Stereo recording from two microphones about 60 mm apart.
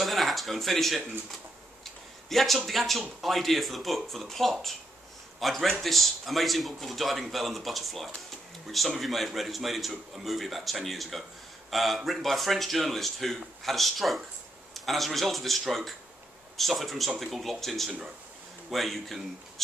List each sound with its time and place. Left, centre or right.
0.0 s a man's voice: centre